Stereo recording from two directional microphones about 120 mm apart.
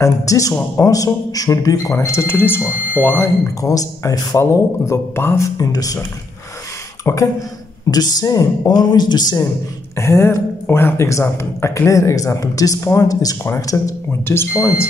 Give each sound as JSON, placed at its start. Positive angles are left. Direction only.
{"t": 0.0, "sound": "speech", "side_deg": 25}
{"t": 3.6, "sound": "speech", "side_deg": 30}
{"t": 5.7, "sound": "speech", "side_deg": 30}
{"t": 7.1, "sound": "speech", "side_deg": 25}
{"t": 7.9, "sound": "speech", "side_deg": 35}
{"t": 9.9, "sound": "speech", "side_deg": 25}